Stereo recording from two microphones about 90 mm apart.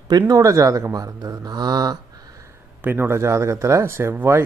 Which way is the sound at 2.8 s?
25° right (ahead or behind).